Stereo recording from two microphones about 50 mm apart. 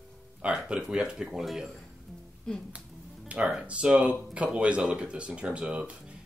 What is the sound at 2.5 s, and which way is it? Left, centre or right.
Speech, centre.